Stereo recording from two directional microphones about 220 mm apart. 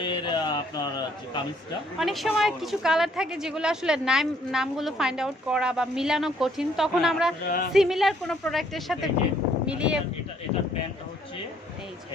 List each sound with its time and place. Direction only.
0.0 s a sound: 20° left (ahead or behind)
2.0 s a woman's voice: centre (ahead or behind)
7.4 s music: 40° left (ahead or behind)
7.7 s a woman's voice: centre (ahead or behind)